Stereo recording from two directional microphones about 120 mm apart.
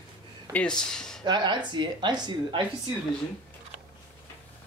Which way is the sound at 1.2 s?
40° right (ahead or behind).